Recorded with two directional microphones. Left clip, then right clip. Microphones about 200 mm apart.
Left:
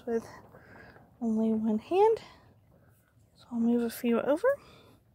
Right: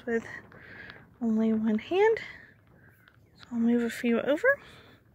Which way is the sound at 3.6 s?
5° left (ahead or behind).